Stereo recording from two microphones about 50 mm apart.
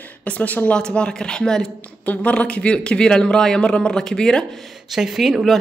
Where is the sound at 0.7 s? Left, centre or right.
Centre.